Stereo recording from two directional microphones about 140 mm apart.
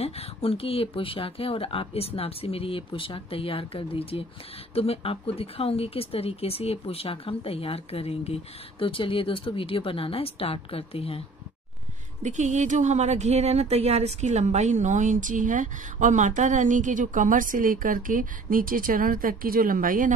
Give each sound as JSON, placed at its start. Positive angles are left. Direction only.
{"t": 0.0, "sound": "speech", "side_deg": 45}
{"t": 12.2, "sound": "speech", "side_deg": -60}